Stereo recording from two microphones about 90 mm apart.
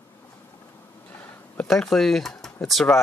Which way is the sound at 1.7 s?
5° left (ahead or behind).